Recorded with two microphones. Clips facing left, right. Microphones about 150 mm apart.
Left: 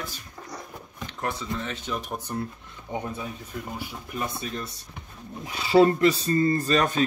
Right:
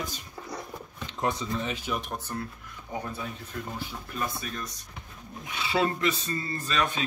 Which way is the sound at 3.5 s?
10° left (ahead or behind).